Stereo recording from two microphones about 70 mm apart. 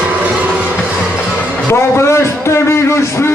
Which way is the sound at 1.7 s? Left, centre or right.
Left.